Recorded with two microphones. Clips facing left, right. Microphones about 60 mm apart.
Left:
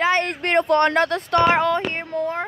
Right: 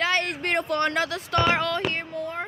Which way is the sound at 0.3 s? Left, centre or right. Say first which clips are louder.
Left 7 dB; left.